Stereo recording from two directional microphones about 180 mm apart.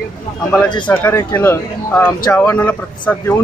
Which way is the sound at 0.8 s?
10° left (ahead or behind).